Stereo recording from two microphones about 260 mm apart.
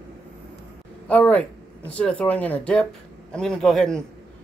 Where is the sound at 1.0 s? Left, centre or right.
Centre.